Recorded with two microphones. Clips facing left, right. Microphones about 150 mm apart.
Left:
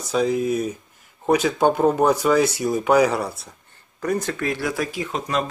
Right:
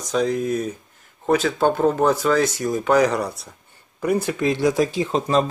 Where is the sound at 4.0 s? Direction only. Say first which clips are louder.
Right 3 dB; 10° right (ahead or behind); by 5.5 s 30° right (ahead or behind).